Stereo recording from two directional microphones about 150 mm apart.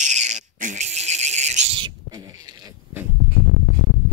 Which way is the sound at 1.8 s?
25° right (ahead or behind).